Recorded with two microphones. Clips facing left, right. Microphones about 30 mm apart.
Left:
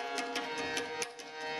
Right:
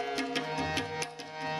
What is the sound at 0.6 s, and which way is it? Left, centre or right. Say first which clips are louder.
Music: right 3 dB; centre.